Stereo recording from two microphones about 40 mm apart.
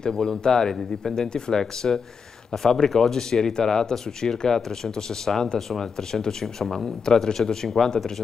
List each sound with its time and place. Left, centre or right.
0.0 s speech: centre